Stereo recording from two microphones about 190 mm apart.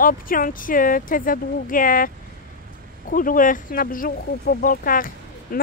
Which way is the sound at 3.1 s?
45° left (ahead or behind).